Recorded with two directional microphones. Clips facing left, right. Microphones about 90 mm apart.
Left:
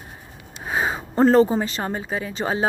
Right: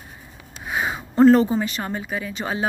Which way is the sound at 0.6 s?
35° left (ahead or behind).